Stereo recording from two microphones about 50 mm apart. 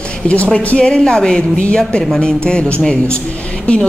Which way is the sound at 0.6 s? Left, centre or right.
Left.